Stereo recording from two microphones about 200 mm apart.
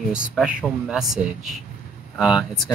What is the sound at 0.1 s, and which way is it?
Speech, 5° right (ahead or behind).